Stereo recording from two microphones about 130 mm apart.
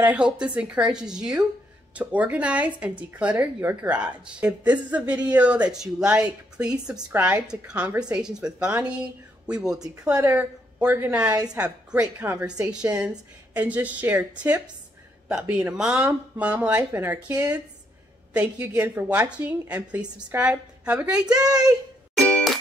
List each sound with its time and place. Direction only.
0.0 s a woman's voice: 10° right (ahead or behind)
11.2 s a woman's voice: 30° right (ahead or behind)
11.5 s a woman's voice: 10° right (ahead or behind)
18.3 s a woman's voice: 10° right (ahead or behind)
22.2 s music: 10° left (ahead or behind)